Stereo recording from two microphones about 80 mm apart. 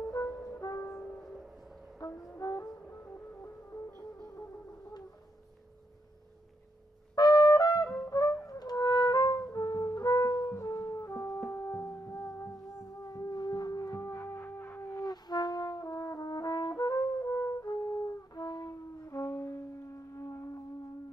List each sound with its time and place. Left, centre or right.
0.6 s music: left
1.2 s music: centre
2.0 s music: left
2.4 s music: left
4.2 s music: left
7.2 s trumpet: left
8.5 s music: left
13.1 s music: left
15.0 s brass instrument: left
19.0 s music: left